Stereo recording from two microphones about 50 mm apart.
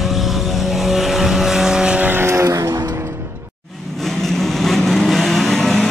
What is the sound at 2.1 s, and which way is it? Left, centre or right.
Vehicle, right.